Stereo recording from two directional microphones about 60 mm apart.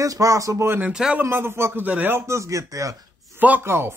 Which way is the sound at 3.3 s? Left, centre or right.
Right.